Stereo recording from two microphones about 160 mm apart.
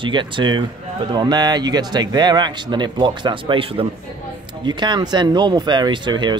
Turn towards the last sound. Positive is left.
turn(degrees=-30)  # may be behind; listen again after turning